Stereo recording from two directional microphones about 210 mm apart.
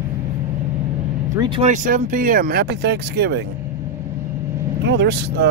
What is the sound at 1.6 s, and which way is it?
Speech, 35° right (ahead or behind).